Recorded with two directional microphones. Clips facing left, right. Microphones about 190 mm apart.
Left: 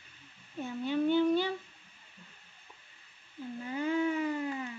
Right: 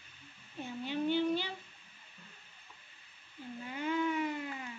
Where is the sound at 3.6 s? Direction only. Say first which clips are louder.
Left 3 dB; 35° left (ahead or behind).